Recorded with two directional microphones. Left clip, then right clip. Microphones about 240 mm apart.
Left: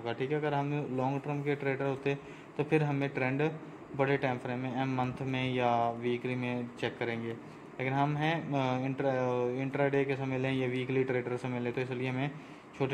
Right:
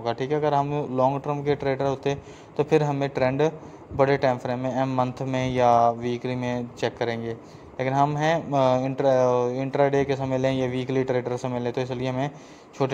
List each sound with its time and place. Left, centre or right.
0.0 s speech: right